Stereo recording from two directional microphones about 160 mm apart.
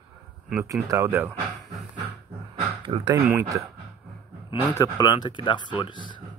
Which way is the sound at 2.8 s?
30° right (ahead or behind).